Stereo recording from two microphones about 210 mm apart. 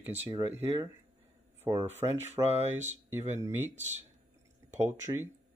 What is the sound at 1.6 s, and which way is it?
Speech, 15° right (ahead or behind).